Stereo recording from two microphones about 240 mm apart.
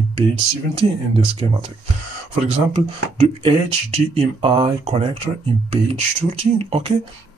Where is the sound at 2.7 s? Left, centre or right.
Right.